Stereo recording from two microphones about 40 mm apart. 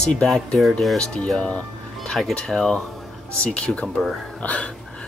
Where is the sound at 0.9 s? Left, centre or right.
Centre.